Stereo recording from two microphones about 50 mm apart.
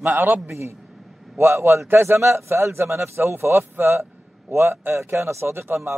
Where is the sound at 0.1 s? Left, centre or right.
Right.